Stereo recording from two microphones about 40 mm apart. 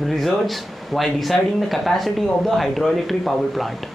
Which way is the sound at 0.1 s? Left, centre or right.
Centre.